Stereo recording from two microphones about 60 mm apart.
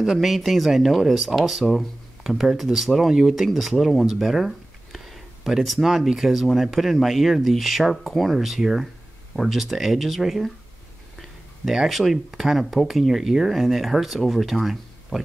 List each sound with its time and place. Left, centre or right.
0.0 s speech: centre